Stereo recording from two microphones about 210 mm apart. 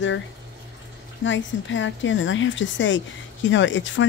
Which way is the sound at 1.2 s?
65° left (ahead or behind).